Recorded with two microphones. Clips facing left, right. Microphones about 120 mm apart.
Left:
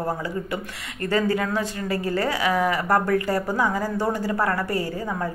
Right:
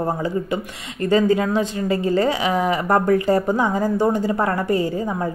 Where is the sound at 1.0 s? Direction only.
20° right (ahead or behind).